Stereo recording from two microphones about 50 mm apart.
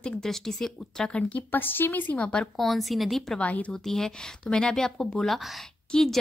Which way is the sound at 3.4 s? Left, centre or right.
Left.